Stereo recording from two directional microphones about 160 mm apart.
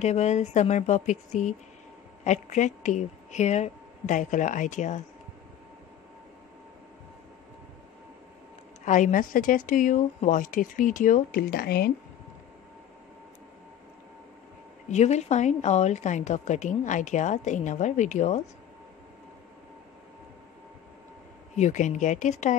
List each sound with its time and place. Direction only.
0.0 s a woman's voice: 45° left (ahead or behind)
8.8 s a woman's voice: 50° left (ahead or behind); by 11.9 s 75° left (ahead or behind)
14.9 s a woman's voice: 45° left (ahead or behind)
21.5 s a woman's voice: 50° left (ahead or behind)